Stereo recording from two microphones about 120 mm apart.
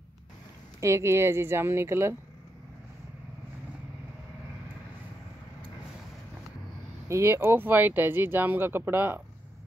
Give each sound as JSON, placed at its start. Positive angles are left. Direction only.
{"t": 0.7, "sound": "a woman's voice", "side_deg": -25}
{"t": 7.1, "sound": "speech", "side_deg": -25}